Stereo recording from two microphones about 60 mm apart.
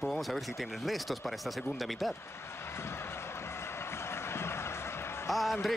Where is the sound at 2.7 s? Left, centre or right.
Left.